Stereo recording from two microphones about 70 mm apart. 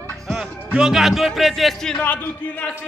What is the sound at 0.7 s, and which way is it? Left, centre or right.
Music, centre.